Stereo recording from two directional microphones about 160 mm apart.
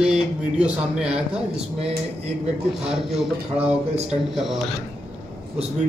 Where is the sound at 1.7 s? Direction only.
40° right (ahead or behind).